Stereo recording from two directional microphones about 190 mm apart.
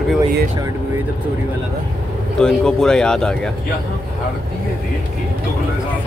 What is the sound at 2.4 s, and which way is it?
Speech, 5° left (ahead or behind).